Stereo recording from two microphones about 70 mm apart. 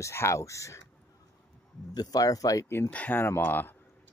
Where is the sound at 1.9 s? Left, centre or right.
Left.